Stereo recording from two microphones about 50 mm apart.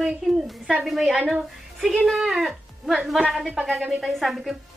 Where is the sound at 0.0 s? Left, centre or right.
Centre.